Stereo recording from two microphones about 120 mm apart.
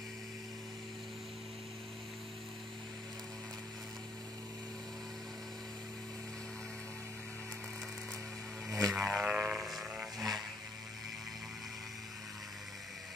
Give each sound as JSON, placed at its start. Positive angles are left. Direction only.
{"t": 8.6, "sound": "music", "side_deg": -25}
{"t": 8.9, "sound": "music", "side_deg": -5}
{"t": 9.5, "sound": "vehicle", "side_deg": 0}